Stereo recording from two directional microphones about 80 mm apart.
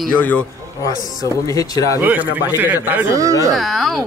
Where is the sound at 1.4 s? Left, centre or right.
Left.